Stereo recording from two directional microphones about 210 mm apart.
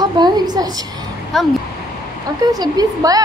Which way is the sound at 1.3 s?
Centre (ahead or behind).